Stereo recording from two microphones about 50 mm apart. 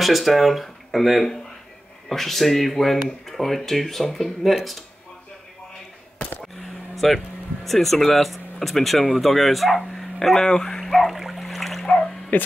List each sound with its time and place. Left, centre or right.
0.0 s speech: centre
7.0 s speech: centre
10.9 s trickle: centre
12.3 s speech: left